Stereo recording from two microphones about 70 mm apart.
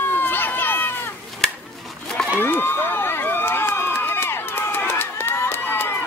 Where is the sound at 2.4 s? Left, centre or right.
Left.